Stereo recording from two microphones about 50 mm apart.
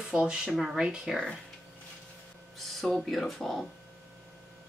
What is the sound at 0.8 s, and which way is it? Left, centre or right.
Speech, centre.